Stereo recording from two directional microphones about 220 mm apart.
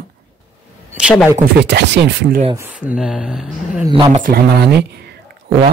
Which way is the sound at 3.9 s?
20° right (ahead or behind).